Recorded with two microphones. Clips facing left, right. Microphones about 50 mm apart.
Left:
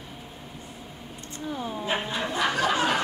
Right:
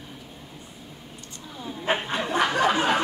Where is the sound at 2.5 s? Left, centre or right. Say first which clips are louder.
Even; right.